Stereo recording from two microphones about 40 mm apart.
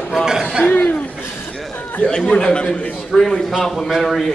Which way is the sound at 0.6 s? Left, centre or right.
Left.